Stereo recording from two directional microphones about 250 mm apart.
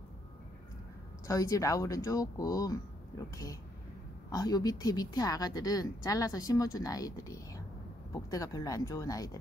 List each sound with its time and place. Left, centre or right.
1.2 s speech: centre